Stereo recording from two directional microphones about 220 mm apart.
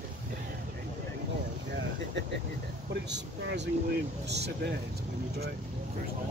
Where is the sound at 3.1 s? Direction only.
55° right (ahead or behind).